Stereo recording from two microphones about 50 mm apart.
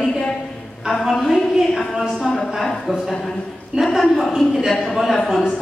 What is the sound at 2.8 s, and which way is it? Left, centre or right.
Speech, centre.